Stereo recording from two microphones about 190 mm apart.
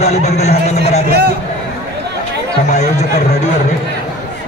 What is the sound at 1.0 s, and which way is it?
Speech, 55° right (ahead or behind).